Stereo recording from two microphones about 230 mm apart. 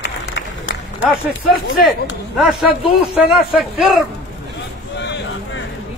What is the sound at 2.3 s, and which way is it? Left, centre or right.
A man's voice, centre.